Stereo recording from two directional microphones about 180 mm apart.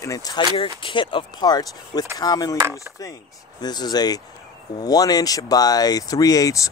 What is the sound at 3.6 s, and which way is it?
Speech, 20° left (ahead or behind).